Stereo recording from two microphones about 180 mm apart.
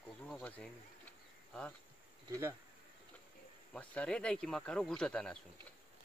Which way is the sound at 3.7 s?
5° left (ahead or behind).